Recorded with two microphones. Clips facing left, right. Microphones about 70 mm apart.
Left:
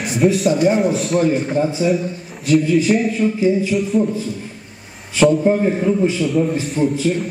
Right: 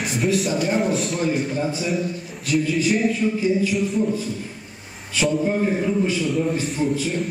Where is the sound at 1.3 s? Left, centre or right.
Left.